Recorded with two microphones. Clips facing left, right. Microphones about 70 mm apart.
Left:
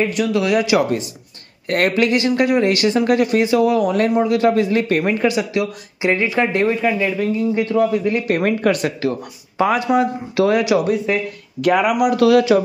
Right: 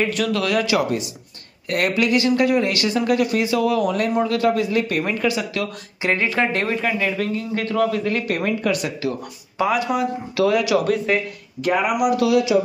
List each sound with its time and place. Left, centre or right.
0.1 s speech: centre
1.7 s speech: left
5.6 s speech: centre
8.4 s speech: left
10.8 s speech: centre
12.0 s speech: left